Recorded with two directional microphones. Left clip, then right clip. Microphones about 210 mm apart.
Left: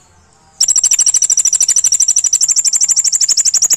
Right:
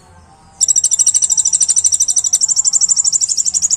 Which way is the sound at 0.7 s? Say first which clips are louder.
Left 2 dB; 35° left (ahead or behind).